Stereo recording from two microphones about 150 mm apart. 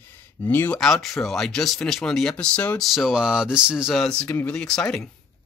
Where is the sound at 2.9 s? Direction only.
Centre (ahead or behind).